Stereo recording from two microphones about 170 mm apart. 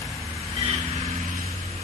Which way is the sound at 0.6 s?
40° right (ahead or behind).